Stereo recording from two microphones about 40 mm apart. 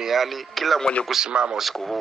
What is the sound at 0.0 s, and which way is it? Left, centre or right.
Speech, centre.